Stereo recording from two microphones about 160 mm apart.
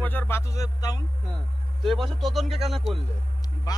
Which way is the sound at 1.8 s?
Centre (ahead or behind).